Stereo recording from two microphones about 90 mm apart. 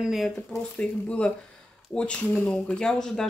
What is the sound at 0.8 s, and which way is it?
Speech, 15° left (ahead or behind).